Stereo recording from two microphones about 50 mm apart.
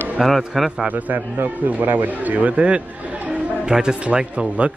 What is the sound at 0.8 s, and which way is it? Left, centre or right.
A man's voice, right.